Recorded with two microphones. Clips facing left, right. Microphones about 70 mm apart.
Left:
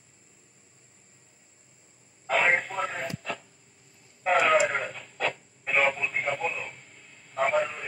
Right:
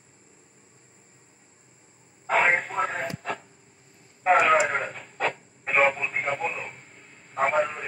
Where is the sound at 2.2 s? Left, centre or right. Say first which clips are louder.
Right 2 dB; right.